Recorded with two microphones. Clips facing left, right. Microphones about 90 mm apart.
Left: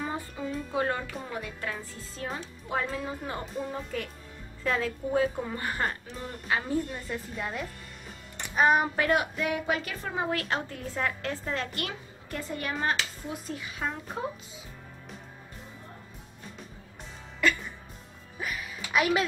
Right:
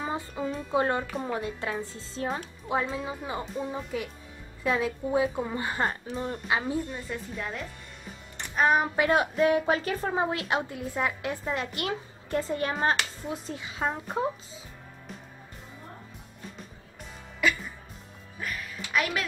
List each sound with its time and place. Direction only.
0.4 s music: 25° right (ahead or behind)
0.7 s a woman's voice: 25° right (ahead or behind)
2.9 s a woman's voice: 5° right (ahead or behind); by 6.3 s 30° right (ahead or behind)
6.4 s a woman's voice: 10° right (ahead or behind)
9.1 s a woman's voice: 30° right (ahead or behind)
10.3 s a woman's voice: 15° right (ahead or behind)
17.4 s music: 5° right (ahead or behind)
18.4 s a sound: 10° left (ahead or behind)